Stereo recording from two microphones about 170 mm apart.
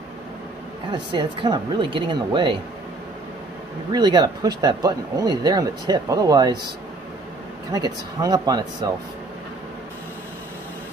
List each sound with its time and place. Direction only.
0.9 s speech: 25° right (ahead or behind)
3.9 s speech: 25° right (ahead or behind)
7.7 s speech: 20° right (ahead or behind)